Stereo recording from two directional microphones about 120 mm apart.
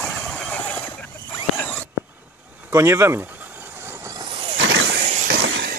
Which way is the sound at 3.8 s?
20° right (ahead or behind).